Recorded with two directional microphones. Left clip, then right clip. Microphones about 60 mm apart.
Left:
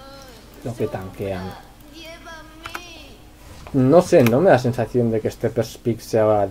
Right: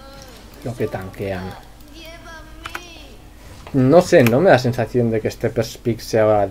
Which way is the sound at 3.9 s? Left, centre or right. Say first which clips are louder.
Right 2 dB; centre.